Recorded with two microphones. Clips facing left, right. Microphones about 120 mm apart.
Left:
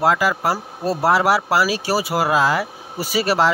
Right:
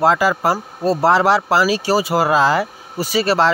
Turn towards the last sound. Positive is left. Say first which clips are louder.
# right 2 dB
turn(degrees=10)  # may be behind; listen again after turning